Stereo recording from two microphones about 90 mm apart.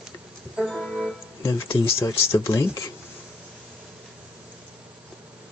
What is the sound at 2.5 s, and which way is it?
Speech, 35° left (ahead or behind).